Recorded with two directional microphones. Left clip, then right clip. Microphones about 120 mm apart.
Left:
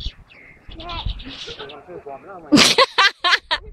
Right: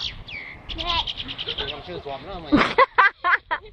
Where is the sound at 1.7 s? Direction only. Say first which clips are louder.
Right 2 dB; 5° right (ahead or behind).